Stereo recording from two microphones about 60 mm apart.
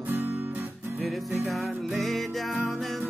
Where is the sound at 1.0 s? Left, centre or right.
Centre.